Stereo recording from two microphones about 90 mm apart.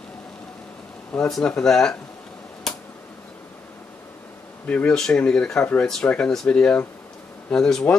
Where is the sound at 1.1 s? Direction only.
5° left (ahead or behind).